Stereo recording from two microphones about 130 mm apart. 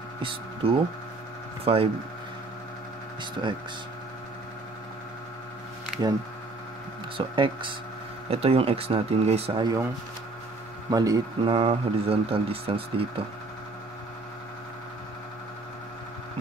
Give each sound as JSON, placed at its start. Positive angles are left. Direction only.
{"t": 0.6, "sound": "speech", "side_deg": -45}
{"t": 7.2, "sound": "speech", "side_deg": -40}
{"t": 10.9, "sound": "a man's voice", "side_deg": -30}
{"t": 11.5, "sound": "speech", "side_deg": -45}